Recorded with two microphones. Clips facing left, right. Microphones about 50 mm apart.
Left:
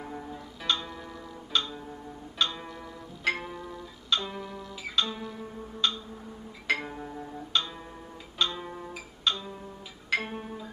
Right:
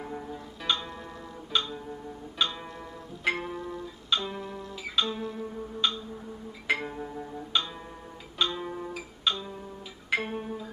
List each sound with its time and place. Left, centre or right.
0.0 s music: centre
4.5 s guitar: right
4.8 s music: centre